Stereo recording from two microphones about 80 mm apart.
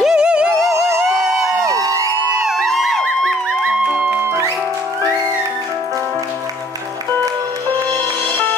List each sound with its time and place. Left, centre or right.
0.0 s music: centre
1.7 s music: right
2.4 s music: centre
3.8 s music: centre
4.2 s music: right